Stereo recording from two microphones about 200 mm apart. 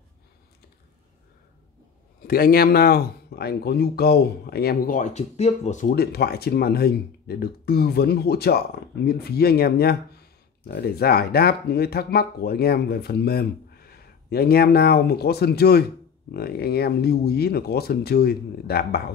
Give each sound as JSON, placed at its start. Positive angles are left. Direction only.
{"t": 2.2, "sound": "speech", "side_deg": 50}